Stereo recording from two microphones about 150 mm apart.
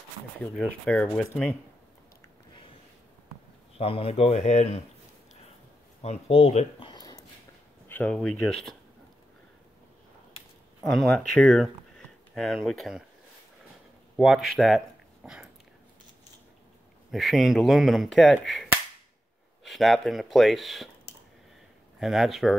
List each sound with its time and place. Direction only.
0.6 s speech: 5° left (ahead or behind)
3.7 s speech: 40° left (ahead or behind)
6.0 s speech: 40° left (ahead or behind)
7.9 s speech: 10° left (ahead or behind)
10.8 s speech: 5° left (ahead or behind)
14.1 s speech: centre (ahead or behind)
15.2 s dog: 5° right (ahead or behind)
17.1 s speech: centre (ahead or behind)
22.0 s speech: centre (ahead or behind)